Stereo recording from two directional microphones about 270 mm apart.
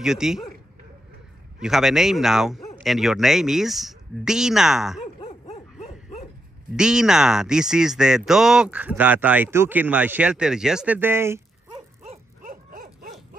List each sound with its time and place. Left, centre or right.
0.0 s speech: centre
1.6 s speech: centre
5.2 s bow-wow: left
6.8 s speech: centre
12.1 s livestock: right